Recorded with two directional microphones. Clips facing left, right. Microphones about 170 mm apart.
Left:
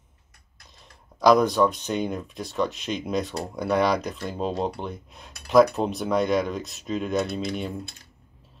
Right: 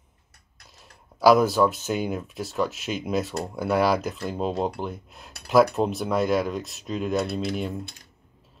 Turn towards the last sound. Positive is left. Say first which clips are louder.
# right 1 dB
turn(degrees=0)  # may be behind; listen again after turning